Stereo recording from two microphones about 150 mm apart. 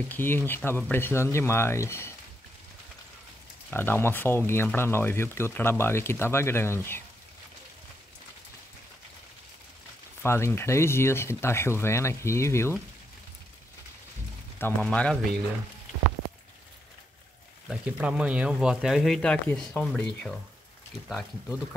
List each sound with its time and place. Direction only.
0.1 s speech: 15° left (ahead or behind)
3.7 s speech: 15° left (ahead or behind)
10.2 s speech: 15° left (ahead or behind)
14.6 s speech: 10° left (ahead or behind)
17.6 s speech: 5° right (ahead or behind)